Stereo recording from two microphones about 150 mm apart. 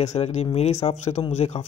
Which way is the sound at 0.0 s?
45° left (ahead or behind).